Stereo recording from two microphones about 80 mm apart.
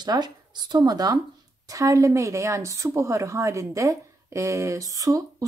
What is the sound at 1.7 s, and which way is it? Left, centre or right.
A woman's voice, right.